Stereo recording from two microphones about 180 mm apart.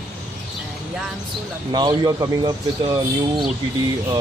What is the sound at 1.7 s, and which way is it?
Speech, 25° right (ahead or behind).